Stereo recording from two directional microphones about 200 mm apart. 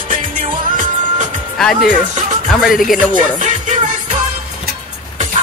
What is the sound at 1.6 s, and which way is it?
Speech, centre (ahead or behind).